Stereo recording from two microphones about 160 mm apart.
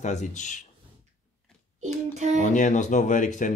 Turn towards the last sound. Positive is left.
turn(degrees=50)  # may be behind; listen again after turning